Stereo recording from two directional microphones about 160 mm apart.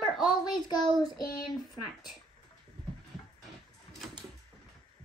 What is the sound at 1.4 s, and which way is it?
Speech, centre (ahead or behind).